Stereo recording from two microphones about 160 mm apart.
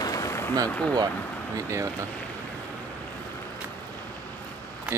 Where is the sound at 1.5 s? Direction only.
20° right (ahead or behind).